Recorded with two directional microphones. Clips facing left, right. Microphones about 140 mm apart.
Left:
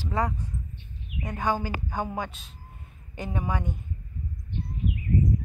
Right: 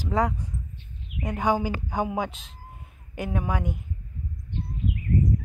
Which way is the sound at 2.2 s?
90° right.